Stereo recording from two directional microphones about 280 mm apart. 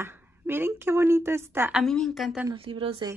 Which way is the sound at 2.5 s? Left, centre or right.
Centre.